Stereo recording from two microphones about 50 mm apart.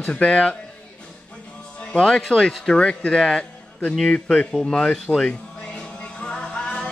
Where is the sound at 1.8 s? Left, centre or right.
Left.